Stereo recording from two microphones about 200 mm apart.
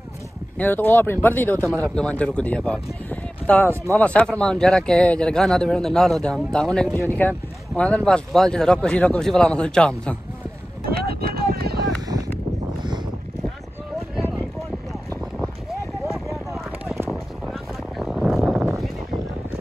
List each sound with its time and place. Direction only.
0.6 s speech: 10° left (ahead or behind)
3.6 s speech: 15° right (ahead or behind)
4.0 s speech: 5° left (ahead or behind)
10.8 s vehicle: 50° right (ahead or behind)
14.9 s boat: centre (ahead or behind)
16.3 s a sound: centre (ahead or behind)
17.1 s boat: centre (ahead or behind)